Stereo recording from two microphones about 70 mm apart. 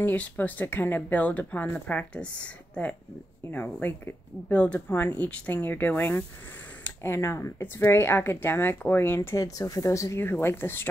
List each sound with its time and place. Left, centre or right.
0.0 s speech: left
7.0 s speech: left
9.4 s speech: left
10.4 s speech: left